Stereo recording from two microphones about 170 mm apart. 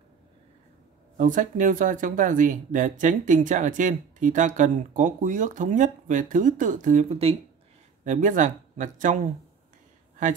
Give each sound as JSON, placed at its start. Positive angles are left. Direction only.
{"t": 1.1, "sound": "speech", "side_deg": -50}
{"t": 8.0, "sound": "speech", "side_deg": -50}